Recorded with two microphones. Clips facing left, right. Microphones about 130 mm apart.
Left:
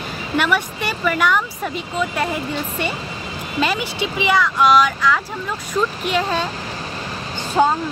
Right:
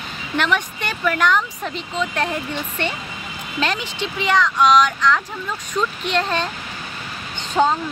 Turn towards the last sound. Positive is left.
turn(degrees=5)  # may be behind; listen again after turning